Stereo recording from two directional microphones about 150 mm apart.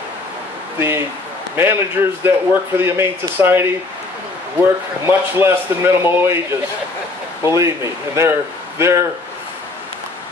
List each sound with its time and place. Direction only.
0.7 s a man's voice: 15° right (ahead or behind)
5.0 s a man's voice: 15° right (ahead or behind)
7.4 s a man's voice: 20° right (ahead or behind)